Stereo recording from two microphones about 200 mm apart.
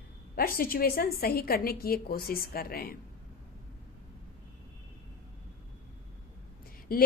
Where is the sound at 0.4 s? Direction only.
45° left (ahead or behind).